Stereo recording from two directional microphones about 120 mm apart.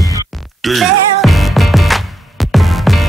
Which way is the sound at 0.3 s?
Centre (ahead or behind).